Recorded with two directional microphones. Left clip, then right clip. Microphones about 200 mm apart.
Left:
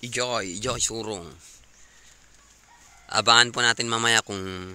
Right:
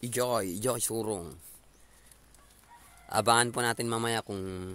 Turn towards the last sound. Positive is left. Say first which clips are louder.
# left 9 dB
turn(degrees=5)  # may be behind; listen again after turning